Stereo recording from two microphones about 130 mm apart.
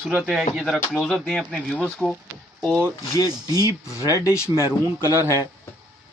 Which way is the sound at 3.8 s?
25° left (ahead or behind).